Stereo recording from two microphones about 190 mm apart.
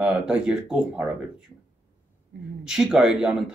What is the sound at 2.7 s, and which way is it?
Speech, 5° right (ahead or behind).